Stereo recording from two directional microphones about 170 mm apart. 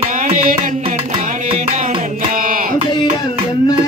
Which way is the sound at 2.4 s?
55° right (ahead or behind).